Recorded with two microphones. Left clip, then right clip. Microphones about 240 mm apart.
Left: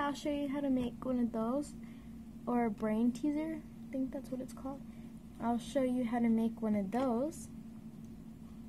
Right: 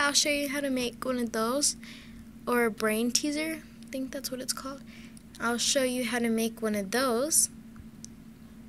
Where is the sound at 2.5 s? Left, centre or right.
Centre.